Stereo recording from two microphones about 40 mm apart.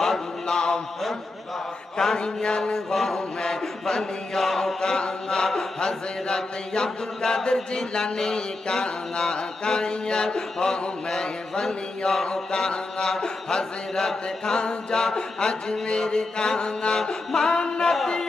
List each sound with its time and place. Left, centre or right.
0.0 s music: centre
2.0 s chant: centre
2.9 s mantra: centre
3.2 s chant: centre